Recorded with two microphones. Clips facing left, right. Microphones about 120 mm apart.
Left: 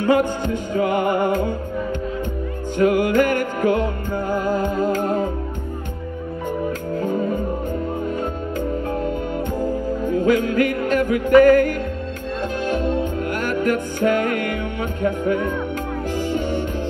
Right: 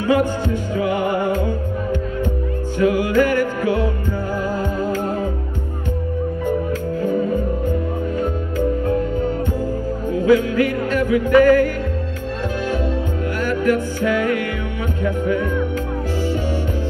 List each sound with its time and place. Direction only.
0.7 s music: 50° left (ahead or behind)
2.8 s music: 50° left (ahead or behind)
3.8 s music: 20° left (ahead or behind)
4.9 s music: 50° left (ahead or behind)
10.1 s music: 50° left (ahead or behind)
12.6 s music: 20° left (ahead or behind)
13.7 s music: 50° left (ahead or behind)
16.3 s music: 20° left (ahead or behind)